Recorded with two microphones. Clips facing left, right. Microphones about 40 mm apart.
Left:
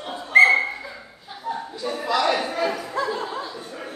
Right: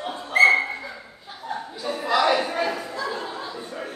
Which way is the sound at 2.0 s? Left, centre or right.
Centre.